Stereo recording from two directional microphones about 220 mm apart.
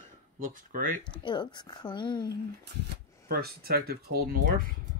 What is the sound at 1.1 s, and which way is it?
Speech, 20° left (ahead or behind).